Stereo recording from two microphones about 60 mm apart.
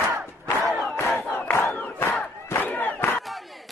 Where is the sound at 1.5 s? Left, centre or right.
Left.